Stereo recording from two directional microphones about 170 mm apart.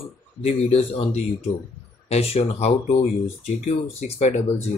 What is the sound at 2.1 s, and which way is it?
Speech, 35° left (ahead or behind).